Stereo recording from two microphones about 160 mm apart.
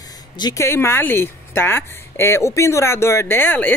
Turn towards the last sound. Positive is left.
turn(degrees=10)  # may be behind; listen again after turning